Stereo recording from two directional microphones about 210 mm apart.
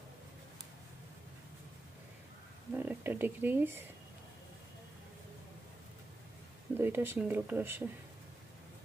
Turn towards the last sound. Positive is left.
turn(degrees=-10)  # may be behind; listen again after turning